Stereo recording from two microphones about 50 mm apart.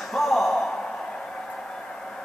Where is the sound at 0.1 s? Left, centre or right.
Centre.